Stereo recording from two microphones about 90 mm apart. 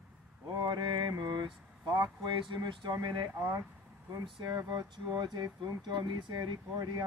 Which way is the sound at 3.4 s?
30° right (ahead or behind).